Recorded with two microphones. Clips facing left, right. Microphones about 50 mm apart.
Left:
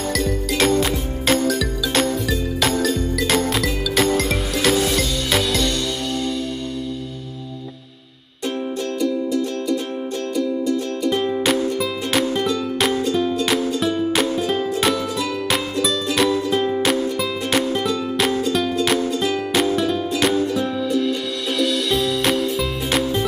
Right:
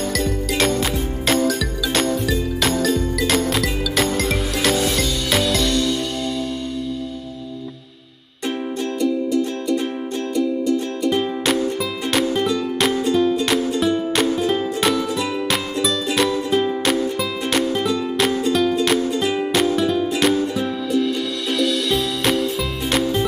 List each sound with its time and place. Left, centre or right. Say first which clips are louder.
0.1 s music: even; centre
11.1 s music: left 1 dB; centre
16.2 s music: even; centre
19.2 s music: right 1 dB; centre
19.5 s music: right 1 dB; centre